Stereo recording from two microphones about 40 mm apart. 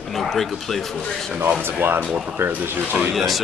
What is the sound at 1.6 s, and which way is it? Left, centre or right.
Speech, right.